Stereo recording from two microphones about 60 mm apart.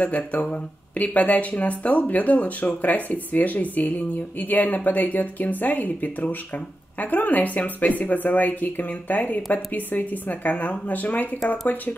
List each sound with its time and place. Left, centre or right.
0.0 s speech: left